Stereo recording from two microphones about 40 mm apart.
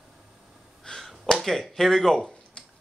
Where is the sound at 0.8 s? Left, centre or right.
Centre.